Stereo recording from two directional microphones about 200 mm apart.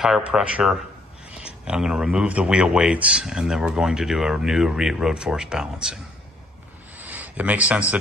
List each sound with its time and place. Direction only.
0.0 s speech: 5° right (ahead or behind)
7.0 s speech: 10° right (ahead or behind)